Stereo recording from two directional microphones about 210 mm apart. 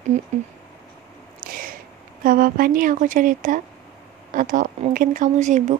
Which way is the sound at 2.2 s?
40° right (ahead or behind).